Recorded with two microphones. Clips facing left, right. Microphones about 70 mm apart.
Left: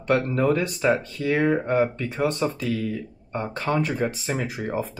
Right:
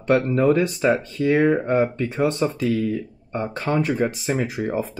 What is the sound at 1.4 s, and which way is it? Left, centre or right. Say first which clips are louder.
Speech: even; centre.